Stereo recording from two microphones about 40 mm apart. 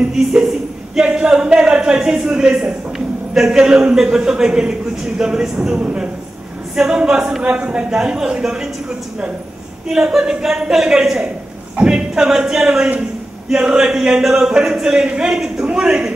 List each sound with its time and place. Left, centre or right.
1.0 s speech: right
2.0 s a man's voice: centre
2.2 s a man's voice: right
7.0 s speech: right
7.9 s a man's voice: centre
10.1 s a man's voice: centre
11.7 s a man's voice: right